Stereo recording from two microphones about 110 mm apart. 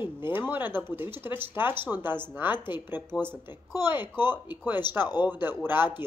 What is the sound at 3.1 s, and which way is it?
Speech, 40° left (ahead or behind).